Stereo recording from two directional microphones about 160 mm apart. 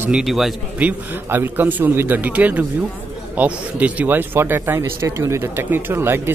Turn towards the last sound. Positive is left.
turn(degrees=-15)  # may be behind; listen again after turning